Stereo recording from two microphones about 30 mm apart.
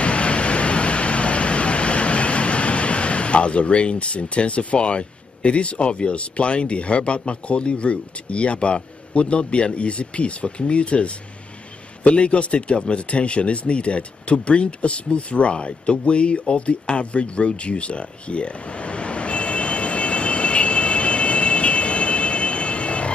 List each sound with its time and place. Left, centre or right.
0.0 s vehicle: left
9.8 s speech: left
13.1 s a sound: left